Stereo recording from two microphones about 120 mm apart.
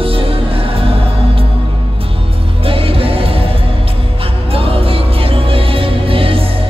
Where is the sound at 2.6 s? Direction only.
50° right (ahead or behind).